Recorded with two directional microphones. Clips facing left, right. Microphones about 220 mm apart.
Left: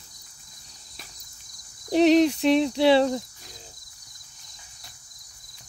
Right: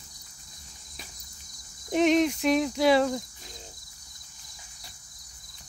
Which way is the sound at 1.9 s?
35° left (ahead or behind).